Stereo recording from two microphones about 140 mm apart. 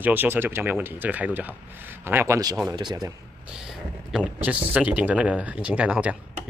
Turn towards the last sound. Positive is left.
turn(degrees=-10)  # may be behind; listen again after turning